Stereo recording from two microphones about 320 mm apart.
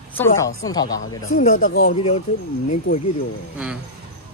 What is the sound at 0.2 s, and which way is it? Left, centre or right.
Speech, centre.